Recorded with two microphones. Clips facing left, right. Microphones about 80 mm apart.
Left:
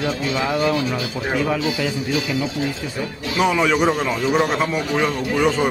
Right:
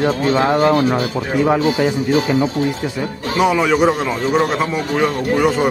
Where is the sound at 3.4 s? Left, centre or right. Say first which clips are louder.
Right 3 dB; centre.